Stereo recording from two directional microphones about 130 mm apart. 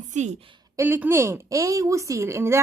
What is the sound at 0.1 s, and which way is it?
Speech, 65° right (ahead or behind).